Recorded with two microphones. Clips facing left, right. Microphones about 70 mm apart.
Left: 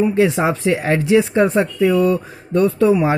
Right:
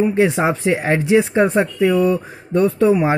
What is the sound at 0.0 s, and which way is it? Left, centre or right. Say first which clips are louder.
Speech: even; right.